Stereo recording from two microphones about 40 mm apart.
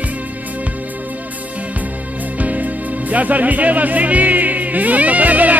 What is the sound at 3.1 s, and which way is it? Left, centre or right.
Music, right.